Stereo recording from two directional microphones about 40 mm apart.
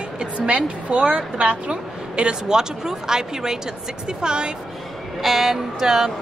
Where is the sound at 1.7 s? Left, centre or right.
Right.